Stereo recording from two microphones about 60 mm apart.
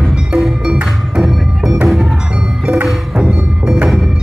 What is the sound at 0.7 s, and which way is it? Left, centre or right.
Music, centre.